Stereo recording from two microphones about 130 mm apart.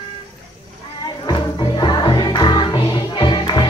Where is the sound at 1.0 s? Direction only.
35° left (ahead or behind).